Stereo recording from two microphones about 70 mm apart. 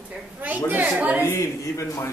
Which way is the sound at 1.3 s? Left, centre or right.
Left.